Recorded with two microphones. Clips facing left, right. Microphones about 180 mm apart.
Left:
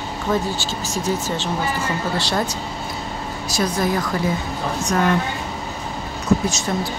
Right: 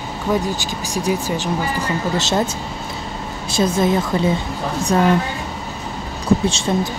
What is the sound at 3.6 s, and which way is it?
Speech, 25° right (ahead or behind).